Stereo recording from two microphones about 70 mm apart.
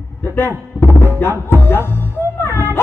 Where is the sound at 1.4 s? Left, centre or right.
Left.